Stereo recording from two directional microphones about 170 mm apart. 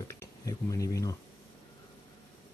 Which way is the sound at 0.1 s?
20° left (ahead or behind).